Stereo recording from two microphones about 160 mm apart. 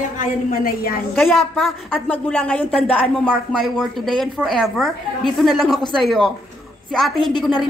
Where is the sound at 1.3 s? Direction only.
Centre (ahead or behind).